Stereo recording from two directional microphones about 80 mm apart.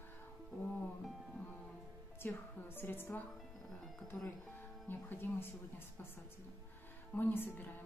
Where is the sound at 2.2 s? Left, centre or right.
Left.